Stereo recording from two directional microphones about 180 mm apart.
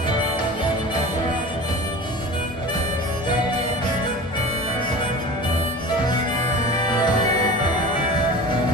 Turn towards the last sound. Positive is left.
turn(degrees=25)  # may be behind; listen again after turning